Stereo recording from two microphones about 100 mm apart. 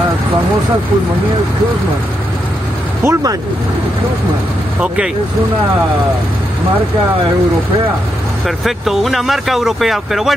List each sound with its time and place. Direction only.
3.0 s speech: 30° right (ahead or behind)
4.7 s speech: 10° right (ahead or behind)
8.5 s speech: centre (ahead or behind)